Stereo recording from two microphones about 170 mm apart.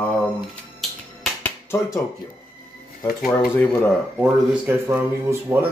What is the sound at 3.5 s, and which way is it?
Mantra, 10° left (ahead or behind).